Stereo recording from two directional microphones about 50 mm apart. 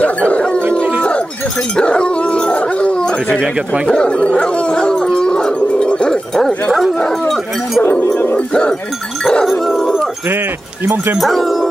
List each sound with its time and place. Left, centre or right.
0.3 s dog: left
1.8 s dog: centre
3.3 s speech: centre
3.8 s dog: centre
7.8 s speech: left
8.4 s speech: centre
9.2 s dog: centre
9.5 s dog: centre
11.1 s speech: centre